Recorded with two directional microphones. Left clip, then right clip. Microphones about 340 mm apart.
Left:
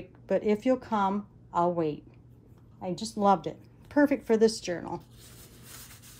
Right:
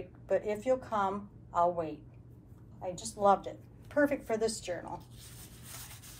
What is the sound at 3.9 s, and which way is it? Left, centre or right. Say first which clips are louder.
Speech: left 4 dB; centre.